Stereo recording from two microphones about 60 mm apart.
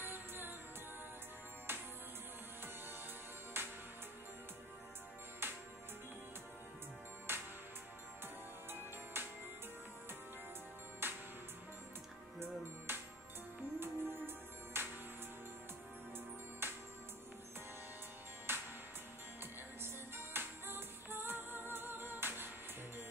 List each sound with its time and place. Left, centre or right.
0.0 s music: right
1.7 s music: right
3.6 s music: right
5.4 s music: right
7.3 s music: right
9.1 s music: right
11.0 s music: right
12.4 s music: right
16.6 s music: right
18.5 s music: right
19.8 s music: right